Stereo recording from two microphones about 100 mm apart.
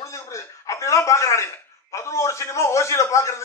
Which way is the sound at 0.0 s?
30° left (ahead or behind).